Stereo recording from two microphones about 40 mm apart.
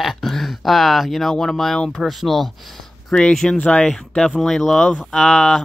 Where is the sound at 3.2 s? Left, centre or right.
Centre.